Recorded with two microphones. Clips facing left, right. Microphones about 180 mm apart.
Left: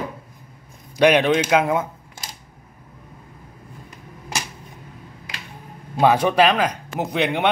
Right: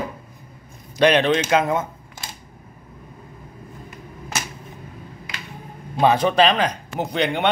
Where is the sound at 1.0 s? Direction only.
10° left (ahead or behind).